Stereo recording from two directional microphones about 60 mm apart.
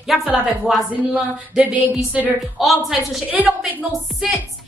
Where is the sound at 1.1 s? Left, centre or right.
Right.